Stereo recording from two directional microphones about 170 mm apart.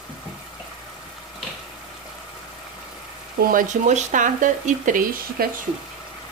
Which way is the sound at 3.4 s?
50° right (ahead or behind).